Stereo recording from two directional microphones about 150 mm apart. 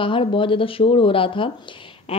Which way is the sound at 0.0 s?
35° left (ahead or behind).